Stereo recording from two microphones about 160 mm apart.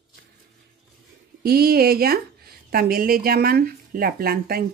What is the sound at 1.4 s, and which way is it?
A woman's voice, 75° right (ahead or behind).